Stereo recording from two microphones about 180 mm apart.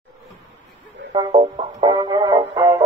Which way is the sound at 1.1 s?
30° right (ahead or behind).